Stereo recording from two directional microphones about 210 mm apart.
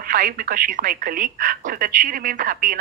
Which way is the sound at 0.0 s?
40° right (ahead or behind).